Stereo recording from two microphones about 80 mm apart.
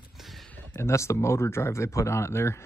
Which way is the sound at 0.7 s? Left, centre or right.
Left.